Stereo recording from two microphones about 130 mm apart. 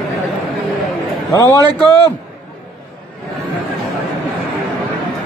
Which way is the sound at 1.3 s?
25° left (ahead or behind).